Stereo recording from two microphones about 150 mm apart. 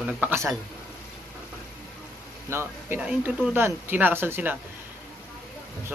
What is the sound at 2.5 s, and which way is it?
Speech, 15° right (ahead or behind).